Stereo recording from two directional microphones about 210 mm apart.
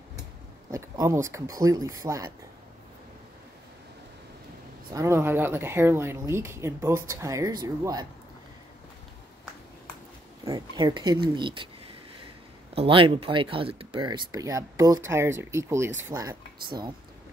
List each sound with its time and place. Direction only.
0.7 s speech: 15° right (ahead or behind)
4.9 s speech: 15° right (ahead or behind)
10.4 s speech: 20° right (ahead or behind)
12.7 s speech: 25° right (ahead or behind)